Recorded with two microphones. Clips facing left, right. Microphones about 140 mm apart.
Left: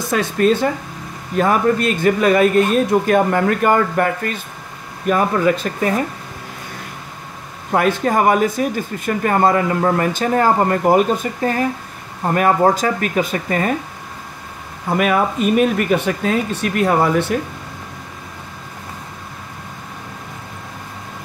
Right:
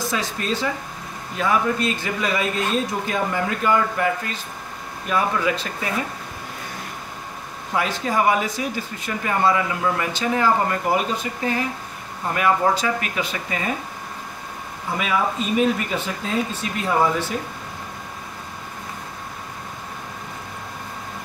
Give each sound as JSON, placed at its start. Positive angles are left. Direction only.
{"t": 0.1, "sound": "a man's voice", "side_deg": 55}
{"t": 7.7, "sound": "speech", "side_deg": 50}
{"t": 14.9, "sound": "a man's voice", "side_deg": 60}